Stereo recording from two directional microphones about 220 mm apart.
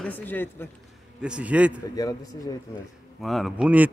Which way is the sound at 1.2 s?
5° right (ahead or behind).